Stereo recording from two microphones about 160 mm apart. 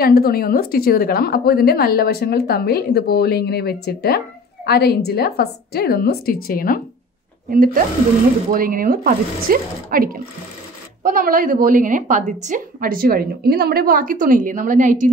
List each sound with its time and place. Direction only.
0.0 s a woman's voice: 70° left (ahead or behind)
7.5 s a woman's voice: 60° right (ahead or behind)